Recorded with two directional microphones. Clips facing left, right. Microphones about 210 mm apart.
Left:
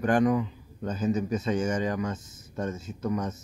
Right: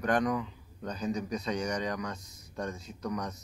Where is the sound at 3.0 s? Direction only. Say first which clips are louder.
Left 5 dB; 25° left (ahead or behind).